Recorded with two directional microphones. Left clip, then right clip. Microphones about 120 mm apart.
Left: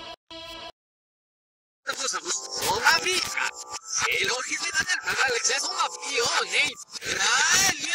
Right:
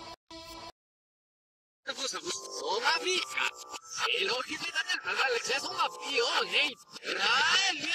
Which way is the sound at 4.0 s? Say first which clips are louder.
Left 4 dB; 35° left (ahead or behind).